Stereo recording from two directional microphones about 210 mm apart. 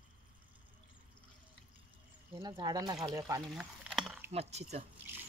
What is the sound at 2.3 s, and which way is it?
Speech, 20° right (ahead or behind).